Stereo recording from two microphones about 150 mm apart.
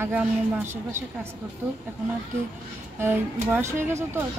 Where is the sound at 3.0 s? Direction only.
15° right (ahead or behind).